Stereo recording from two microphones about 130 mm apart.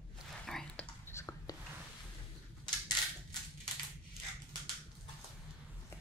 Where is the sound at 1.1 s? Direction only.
20° left (ahead or behind).